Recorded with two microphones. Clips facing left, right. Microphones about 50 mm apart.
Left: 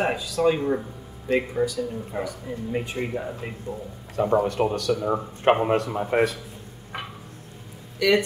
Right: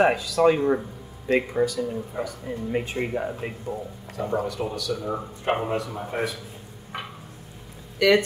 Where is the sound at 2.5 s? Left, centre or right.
Right.